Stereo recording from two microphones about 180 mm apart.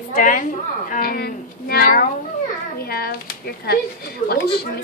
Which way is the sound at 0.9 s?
55° left (ahead or behind).